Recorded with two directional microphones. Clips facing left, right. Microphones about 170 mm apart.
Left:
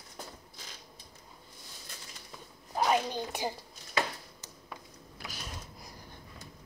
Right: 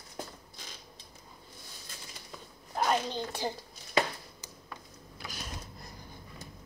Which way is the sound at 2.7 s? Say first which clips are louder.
Left 1 dB; 5° left (ahead or behind).